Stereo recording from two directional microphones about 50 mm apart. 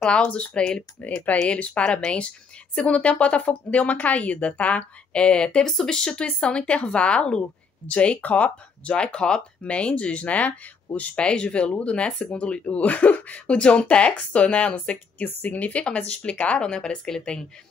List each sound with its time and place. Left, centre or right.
0.3 s speech: left
5.7 s speech: centre
6.0 s speech: left
11.1 s speech: centre
15.2 s speech: left; by 17.5 s centre